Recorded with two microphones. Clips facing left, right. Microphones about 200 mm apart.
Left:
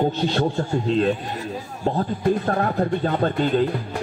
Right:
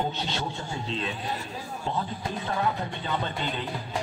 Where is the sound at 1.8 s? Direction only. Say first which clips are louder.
Left 11 dB; 55° left (ahead or behind).